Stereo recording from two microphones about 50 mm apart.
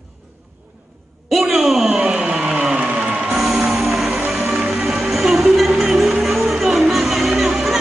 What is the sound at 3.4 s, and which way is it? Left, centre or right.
Music, centre.